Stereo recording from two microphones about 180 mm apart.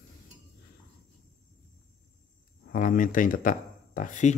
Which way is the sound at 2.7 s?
50° left (ahead or behind).